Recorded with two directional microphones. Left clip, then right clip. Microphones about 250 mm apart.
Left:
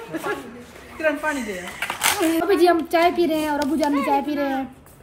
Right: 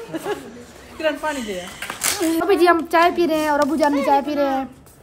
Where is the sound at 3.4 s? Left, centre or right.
Right.